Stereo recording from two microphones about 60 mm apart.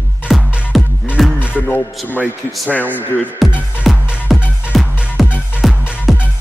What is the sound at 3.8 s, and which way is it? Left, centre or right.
Music, centre.